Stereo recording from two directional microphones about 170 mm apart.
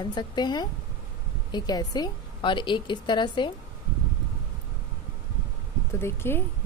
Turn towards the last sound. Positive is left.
turn(degrees=15)  # may be behind; listen again after turning